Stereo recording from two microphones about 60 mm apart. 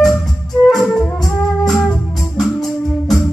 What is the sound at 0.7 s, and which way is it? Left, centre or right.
Music, centre.